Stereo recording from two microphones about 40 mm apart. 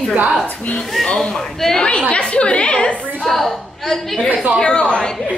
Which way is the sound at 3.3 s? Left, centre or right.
Centre.